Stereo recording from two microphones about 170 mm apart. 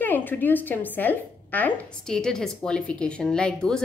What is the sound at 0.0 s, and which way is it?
Speech, 10° left (ahead or behind).